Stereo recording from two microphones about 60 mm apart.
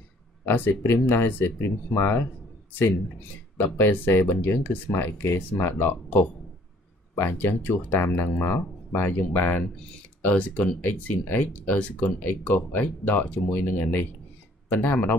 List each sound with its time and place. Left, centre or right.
0.5 s speech: left
3.6 s speech: left